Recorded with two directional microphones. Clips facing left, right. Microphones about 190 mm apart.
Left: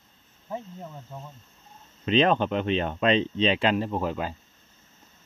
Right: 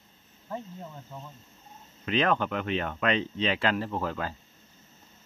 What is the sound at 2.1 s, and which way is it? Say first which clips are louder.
Speech: left 4 dB; 20° left (ahead or behind).